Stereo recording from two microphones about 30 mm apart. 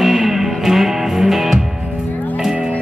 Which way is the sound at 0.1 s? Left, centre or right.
Centre.